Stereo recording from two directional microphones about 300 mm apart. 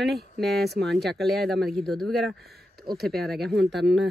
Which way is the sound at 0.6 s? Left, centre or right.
Right.